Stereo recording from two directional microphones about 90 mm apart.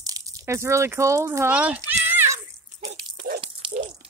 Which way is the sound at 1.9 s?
20° right (ahead or behind).